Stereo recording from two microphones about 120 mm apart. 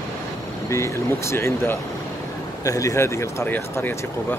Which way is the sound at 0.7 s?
25° left (ahead or behind).